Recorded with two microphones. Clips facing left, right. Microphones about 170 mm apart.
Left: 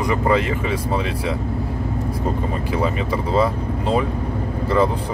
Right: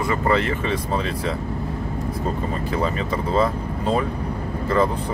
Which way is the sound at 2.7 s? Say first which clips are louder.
Left 2 dB; 10° left (ahead or behind).